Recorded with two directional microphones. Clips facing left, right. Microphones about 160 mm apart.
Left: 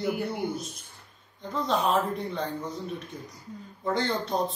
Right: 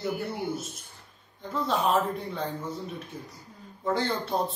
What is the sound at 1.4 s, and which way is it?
Speech, 5° right (ahead or behind).